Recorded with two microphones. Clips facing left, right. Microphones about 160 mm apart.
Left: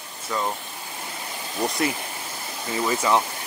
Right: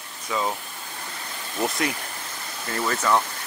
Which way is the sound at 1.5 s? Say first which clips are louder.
Left 1 dB; centre (ahead or behind).